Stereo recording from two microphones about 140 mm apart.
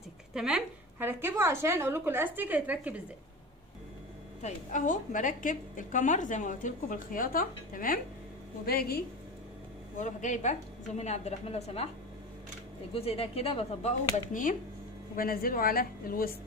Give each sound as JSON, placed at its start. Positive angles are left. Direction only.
{"t": 0.3, "sound": "a woman's voice", "side_deg": -5}
{"t": 0.9, "sound": "a woman's voice", "side_deg": -15}
{"t": 4.4, "sound": "a woman's voice", "side_deg": 65}
{"t": 9.9, "sound": "a woman's voice", "side_deg": 60}
{"t": 12.9, "sound": "a woman's voice", "side_deg": 45}
{"t": 14.3, "sound": "a woman's voice", "side_deg": 75}
{"t": 15.1, "sound": "a woman's voice", "side_deg": 90}